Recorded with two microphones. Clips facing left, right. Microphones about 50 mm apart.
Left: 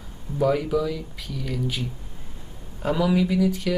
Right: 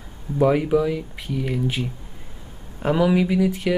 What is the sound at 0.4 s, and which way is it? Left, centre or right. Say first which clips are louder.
Speech: right 4 dB; right.